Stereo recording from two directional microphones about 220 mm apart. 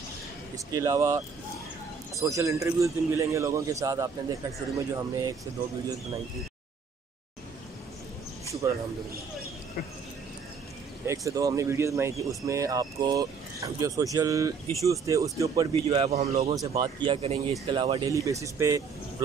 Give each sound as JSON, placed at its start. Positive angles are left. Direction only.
{"t": 0.7, "sound": "speech", "side_deg": -15}
{"t": 11.1, "sound": "speech", "side_deg": -15}
{"t": 15.7, "sound": "speech", "side_deg": -25}
{"t": 16.5, "sound": "speech", "side_deg": -15}